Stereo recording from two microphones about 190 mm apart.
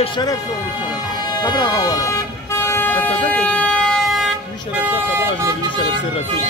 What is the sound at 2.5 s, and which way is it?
Vehicle, 15° left (ahead or behind).